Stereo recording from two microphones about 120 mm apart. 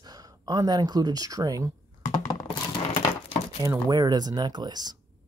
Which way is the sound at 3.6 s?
30° right (ahead or behind).